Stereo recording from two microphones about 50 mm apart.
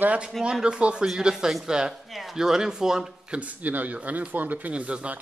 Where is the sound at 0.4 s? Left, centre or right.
Centre.